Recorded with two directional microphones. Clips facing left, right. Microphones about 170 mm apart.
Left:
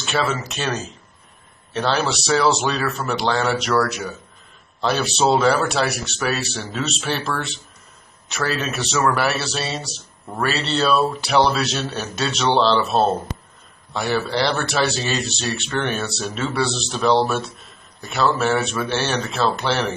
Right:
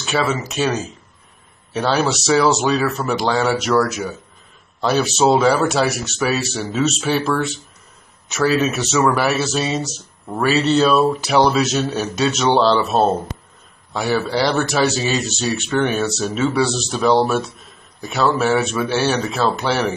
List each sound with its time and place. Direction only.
0.1 s speech: centre (ahead or behind)
9.4 s speech: 15° right (ahead or behind)